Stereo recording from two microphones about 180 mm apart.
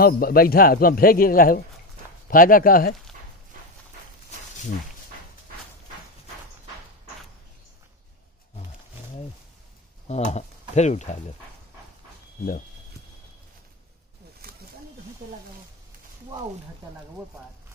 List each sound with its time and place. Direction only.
0.0 s a man's voice: 55° left (ahead or behind)
10.0 s speech: 40° left (ahead or behind)
14.4 s wild animals: 55° right (ahead or behind)